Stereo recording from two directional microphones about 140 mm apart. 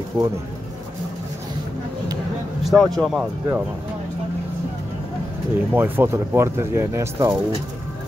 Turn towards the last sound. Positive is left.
turn(degrees=-20)  # may be behind; listen again after turning